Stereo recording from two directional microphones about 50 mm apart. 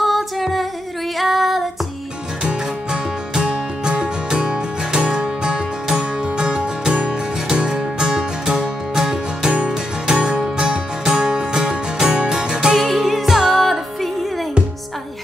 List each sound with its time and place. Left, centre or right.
0.0 s music: centre
1.1 s female singing: centre
2.4 s music: centre
9.5 s music: right; by 13.7 s centre